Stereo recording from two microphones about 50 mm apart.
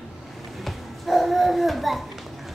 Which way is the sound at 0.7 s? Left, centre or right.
Centre.